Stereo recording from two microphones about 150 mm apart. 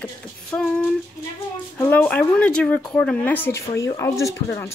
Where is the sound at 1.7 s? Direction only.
10° left (ahead or behind).